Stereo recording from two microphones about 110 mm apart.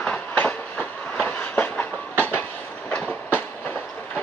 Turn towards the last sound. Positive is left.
turn(degrees=15)  # may be behind; listen again after turning